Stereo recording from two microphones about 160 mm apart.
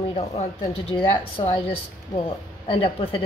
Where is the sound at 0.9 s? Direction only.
35° left (ahead or behind).